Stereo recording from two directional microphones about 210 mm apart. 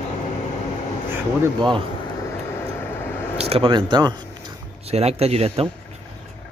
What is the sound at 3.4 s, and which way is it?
Speech, 25° right (ahead or behind).